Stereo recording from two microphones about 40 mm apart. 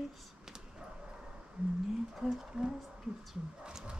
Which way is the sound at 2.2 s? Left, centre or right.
Centre.